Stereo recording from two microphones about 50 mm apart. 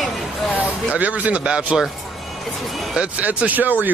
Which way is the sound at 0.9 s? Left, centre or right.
Right.